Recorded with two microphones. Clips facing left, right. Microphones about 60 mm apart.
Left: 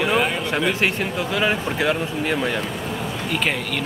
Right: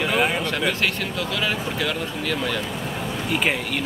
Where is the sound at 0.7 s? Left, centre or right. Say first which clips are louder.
Left 3 dB; left.